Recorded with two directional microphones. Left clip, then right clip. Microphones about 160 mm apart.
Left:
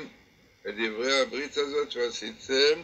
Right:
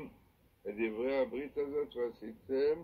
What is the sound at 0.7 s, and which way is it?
A man's voice, 35° left (ahead or behind).